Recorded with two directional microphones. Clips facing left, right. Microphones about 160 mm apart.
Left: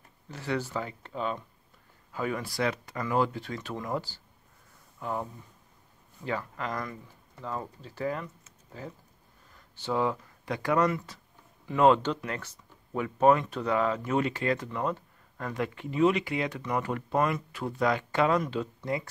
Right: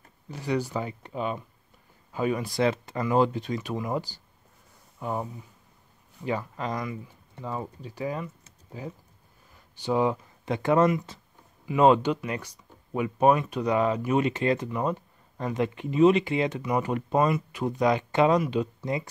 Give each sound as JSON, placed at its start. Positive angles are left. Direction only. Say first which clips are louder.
{"t": 0.3, "sound": "speech", "louder": "right 3 dB", "side_deg": -15}
{"t": 6.2, "sound": "speech", "louder": "right 3 dB", "side_deg": -20}